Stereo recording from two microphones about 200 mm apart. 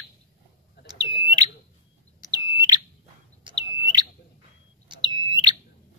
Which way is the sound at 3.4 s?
20° right (ahead or behind).